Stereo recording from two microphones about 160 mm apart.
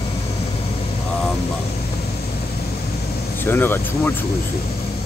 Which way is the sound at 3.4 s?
15° left (ahead or behind).